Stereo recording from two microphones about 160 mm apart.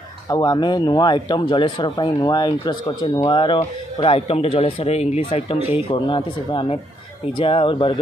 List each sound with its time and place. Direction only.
0.3 s speech: 25° left (ahead or behind)